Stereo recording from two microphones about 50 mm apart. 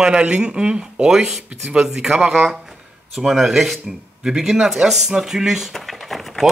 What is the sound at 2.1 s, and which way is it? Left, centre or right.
Speech, centre.